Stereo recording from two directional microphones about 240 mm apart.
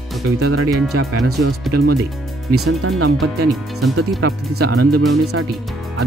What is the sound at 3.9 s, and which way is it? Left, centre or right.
Speech, right.